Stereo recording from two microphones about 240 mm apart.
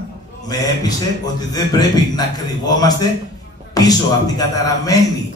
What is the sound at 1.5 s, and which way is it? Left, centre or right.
A man's voice, centre.